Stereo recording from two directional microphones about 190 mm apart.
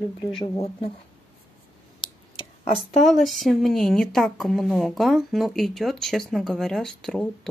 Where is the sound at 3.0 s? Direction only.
Centre (ahead or behind).